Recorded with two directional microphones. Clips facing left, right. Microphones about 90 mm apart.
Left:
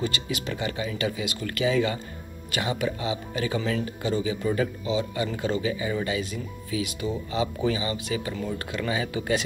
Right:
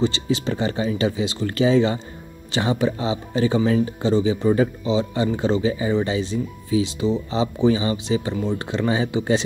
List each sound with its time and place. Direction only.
0.0 s speech: 25° right (ahead or behind)